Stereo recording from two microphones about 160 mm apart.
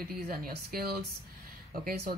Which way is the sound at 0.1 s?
70° right (ahead or behind).